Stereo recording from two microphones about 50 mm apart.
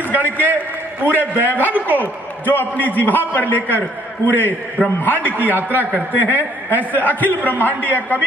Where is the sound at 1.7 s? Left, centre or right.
Right.